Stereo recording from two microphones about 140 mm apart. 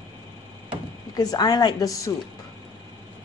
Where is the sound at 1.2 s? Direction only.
30° left (ahead or behind).